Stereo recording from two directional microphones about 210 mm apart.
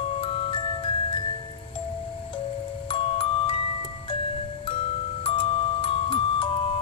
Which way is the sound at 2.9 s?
25° left (ahead or behind).